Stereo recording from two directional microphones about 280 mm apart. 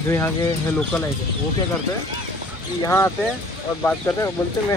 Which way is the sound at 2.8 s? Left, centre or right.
Centre.